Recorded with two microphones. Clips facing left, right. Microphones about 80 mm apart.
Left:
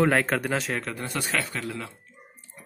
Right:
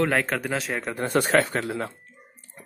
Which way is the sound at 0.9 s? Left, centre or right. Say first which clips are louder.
Right 8 dB; right.